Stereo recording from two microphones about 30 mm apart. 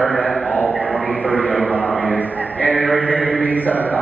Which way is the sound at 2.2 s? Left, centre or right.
Left.